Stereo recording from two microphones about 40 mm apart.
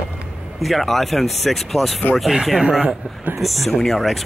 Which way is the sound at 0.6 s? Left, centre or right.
Centre.